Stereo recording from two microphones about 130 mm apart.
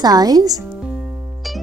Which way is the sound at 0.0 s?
30° right (ahead or behind).